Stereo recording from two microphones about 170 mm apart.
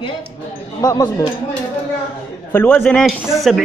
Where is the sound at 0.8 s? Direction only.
25° left (ahead or behind).